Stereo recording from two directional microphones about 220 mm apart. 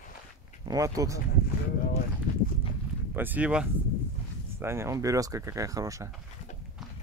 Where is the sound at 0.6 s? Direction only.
15° right (ahead or behind).